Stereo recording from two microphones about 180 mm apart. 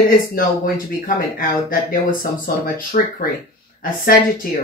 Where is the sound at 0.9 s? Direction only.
55° left (ahead or behind).